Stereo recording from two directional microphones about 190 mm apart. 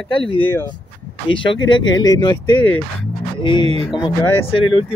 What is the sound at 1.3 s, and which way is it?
Speech, 25° left (ahead or behind).